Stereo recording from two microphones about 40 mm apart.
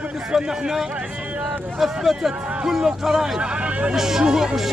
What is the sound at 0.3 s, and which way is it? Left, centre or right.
Speech, centre.